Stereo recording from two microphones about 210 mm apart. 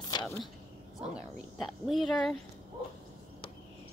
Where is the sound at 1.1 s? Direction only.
Centre (ahead or behind).